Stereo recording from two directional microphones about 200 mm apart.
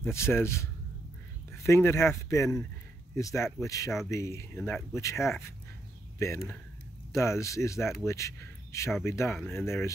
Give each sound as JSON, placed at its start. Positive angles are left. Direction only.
{"t": 0.0, "sound": "speech", "side_deg": 10}